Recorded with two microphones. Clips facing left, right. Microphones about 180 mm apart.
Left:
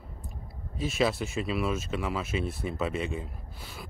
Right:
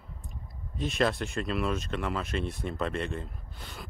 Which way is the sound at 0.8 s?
5° left (ahead or behind).